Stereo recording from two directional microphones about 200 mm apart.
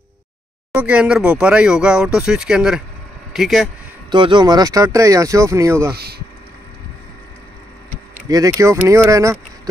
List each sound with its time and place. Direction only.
0.7 s speech: 5° right (ahead or behind)
4.1 s speech: 25° right (ahead or behind)
8.3 s speech: 15° right (ahead or behind)